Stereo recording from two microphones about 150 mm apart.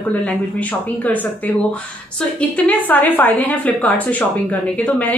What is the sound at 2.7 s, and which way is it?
A woman's voice, 10° left (ahead or behind).